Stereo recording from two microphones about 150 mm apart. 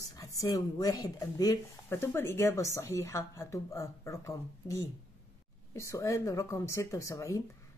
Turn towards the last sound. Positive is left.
turn(degrees=20)  # may be behind; listen again after turning